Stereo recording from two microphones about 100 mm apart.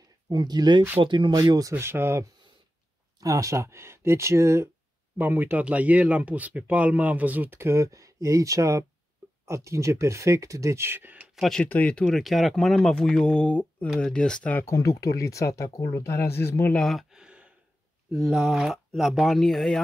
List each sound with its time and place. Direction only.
0.3 s speech: 40° right (ahead or behind)
1.3 s speech: 40° right (ahead or behind)
5.1 s speech: 20° right (ahead or behind)
11.3 s speech: centre (ahead or behind)
11.6 s speech: 15° left (ahead or behind)
14.7 s speech: 35° left (ahead or behind)
16.7 s speech: 5° left (ahead or behind)
17.1 s sigh: 10° right (ahead or behind)
18.1 s speech: 5° right (ahead or behind)